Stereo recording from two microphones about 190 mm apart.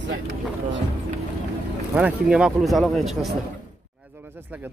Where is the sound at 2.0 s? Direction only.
5° right (ahead or behind).